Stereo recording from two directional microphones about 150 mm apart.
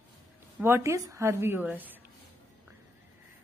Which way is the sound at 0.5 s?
15° right (ahead or behind).